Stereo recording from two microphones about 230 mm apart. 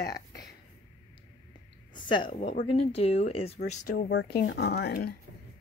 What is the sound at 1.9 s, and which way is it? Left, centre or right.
Speech, left.